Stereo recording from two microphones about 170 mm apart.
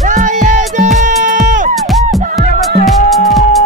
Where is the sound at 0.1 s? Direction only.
45° right (ahead or behind).